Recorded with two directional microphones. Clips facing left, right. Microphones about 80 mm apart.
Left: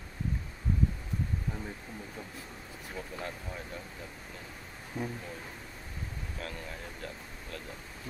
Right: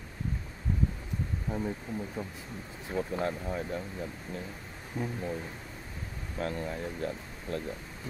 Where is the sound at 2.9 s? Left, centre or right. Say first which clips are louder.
Right 9 dB; right.